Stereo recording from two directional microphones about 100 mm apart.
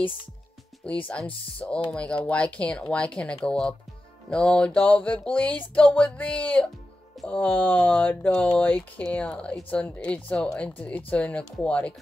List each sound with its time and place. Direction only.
1.0 s speech: 15° left (ahead or behind)